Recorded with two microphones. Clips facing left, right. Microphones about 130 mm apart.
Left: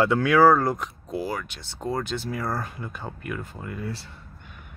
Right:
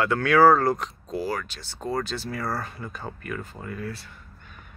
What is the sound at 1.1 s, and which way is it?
Speech, 15° left (ahead or behind).